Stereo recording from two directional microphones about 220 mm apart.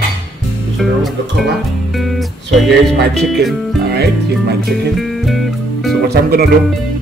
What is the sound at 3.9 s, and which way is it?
Speech, 45° right (ahead or behind).